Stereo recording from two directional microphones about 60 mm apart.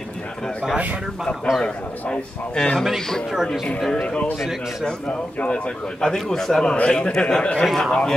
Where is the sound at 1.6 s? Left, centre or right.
Centre.